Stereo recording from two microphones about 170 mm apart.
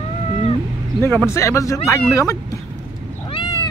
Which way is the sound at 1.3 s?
15° left (ahead or behind).